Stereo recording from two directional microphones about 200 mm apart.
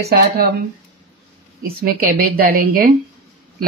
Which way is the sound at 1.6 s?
45° right (ahead or behind).